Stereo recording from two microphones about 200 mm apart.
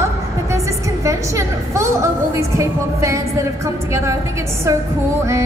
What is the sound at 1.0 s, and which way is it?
Music, 15° right (ahead or behind).